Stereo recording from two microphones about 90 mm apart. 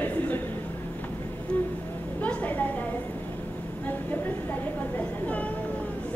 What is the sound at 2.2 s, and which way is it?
Speech, 15° left (ahead or behind).